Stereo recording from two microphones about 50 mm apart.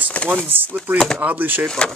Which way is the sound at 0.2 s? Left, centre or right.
Left.